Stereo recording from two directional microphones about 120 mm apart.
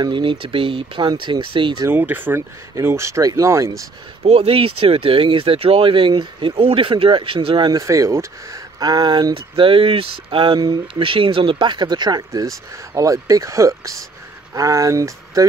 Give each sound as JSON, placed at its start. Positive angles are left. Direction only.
{"t": 0.0, "sound": "speech", "side_deg": -40}
{"t": 1.9, "sound": "speech", "side_deg": -15}
{"t": 4.2, "sound": "speech", "side_deg": -55}